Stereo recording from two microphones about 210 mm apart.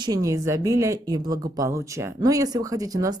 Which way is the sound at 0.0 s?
15° right (ahead or behind).